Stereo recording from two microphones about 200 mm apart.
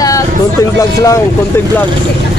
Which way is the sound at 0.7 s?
15° left (ahead or behind).